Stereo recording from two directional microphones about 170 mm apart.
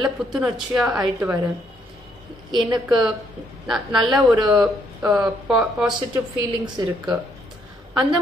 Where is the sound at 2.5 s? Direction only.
25° right (ahead or behind).